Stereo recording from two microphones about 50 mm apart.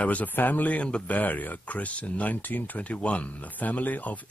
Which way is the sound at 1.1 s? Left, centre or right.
Left.